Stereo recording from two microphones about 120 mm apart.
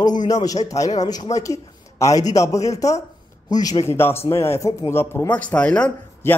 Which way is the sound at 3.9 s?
20° left (ahead or behind).